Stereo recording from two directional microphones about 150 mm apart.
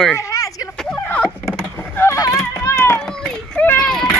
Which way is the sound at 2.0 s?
20° left (ahead or behind).